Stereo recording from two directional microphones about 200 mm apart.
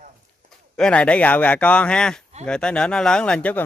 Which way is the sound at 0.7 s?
5° left (ahead or behind).